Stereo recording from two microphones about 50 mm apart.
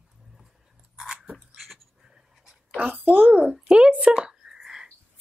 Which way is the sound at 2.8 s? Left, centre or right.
Right.